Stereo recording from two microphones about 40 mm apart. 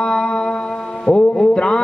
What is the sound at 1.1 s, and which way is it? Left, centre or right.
Speech, left.